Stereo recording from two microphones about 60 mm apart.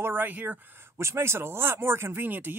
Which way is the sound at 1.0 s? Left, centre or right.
Right.